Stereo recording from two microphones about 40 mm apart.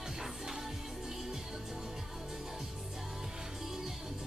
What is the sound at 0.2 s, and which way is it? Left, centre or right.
Music, centre.